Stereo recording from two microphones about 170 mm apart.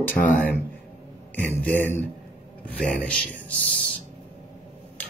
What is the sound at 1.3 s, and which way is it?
Speech, 10° left (ahead or behind).